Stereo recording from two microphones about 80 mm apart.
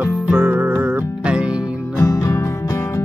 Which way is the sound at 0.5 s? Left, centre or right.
Centre.